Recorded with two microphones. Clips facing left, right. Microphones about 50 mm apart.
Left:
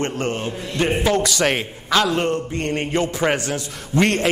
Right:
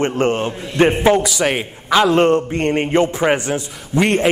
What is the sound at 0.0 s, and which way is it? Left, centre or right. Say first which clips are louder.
A man's voice: right 6 dB; right.